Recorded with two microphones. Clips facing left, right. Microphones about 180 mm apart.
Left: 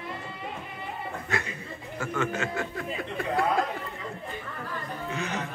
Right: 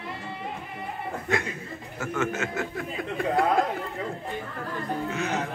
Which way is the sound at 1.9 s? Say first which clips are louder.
Right 1 dB; 5° right (ahead or behind).